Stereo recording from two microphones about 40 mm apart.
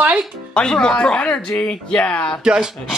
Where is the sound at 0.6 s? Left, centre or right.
Left.